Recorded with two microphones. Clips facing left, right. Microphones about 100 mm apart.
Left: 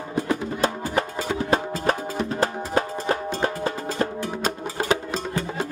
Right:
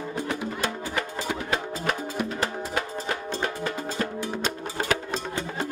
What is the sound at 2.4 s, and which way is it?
Music, 35° left (ahead or behind).